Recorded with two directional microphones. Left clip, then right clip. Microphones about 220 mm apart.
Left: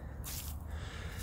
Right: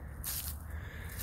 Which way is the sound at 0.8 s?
25° left (ahead or behind).